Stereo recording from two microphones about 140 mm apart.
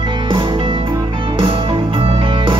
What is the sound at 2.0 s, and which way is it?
Music, 40° right (ahead or behind).